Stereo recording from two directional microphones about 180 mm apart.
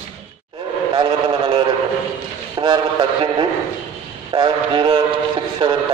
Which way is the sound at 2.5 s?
25° right (ahead or behind).